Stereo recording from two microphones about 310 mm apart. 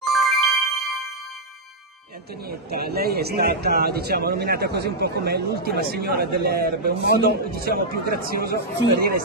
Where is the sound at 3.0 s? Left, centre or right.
Right.